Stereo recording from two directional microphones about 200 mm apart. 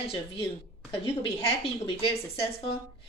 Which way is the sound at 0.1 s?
30° left (ahead or behind).